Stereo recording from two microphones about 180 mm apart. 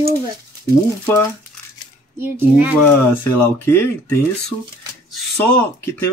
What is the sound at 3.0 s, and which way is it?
Speech, 10° left (ahead or behind).